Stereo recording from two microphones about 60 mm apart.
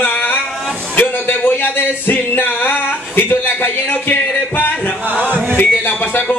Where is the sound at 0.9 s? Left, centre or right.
Left.